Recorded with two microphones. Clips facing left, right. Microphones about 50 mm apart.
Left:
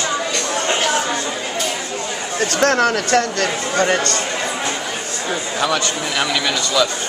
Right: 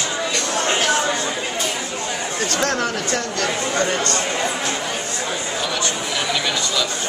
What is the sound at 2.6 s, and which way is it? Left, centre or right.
Speech, left.